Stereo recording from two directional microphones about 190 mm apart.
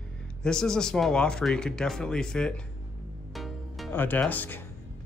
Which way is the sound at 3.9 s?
10° left (ahead or behind).